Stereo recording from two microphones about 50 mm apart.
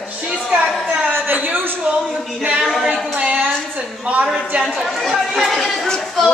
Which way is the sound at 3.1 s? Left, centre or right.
Right.